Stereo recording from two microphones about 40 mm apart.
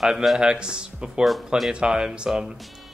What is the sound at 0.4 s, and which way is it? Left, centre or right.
Speech, right.